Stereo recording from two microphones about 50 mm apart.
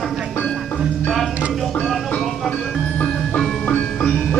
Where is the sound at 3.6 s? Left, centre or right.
Left.